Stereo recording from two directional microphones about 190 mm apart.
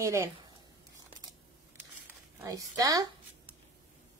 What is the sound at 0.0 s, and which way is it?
Speech, 15° right (ahead or behind).